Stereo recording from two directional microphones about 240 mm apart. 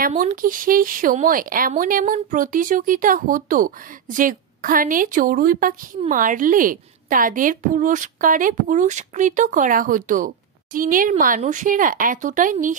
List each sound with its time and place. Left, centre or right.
0.0 s speech: right